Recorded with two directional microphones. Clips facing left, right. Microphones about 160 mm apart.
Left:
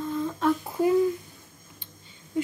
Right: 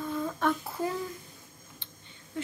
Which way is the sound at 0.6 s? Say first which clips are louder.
Left 8 dB; 15° left (ahead or behind).